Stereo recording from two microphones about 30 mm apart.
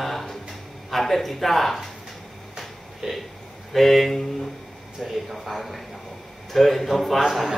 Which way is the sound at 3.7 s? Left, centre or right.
Centre.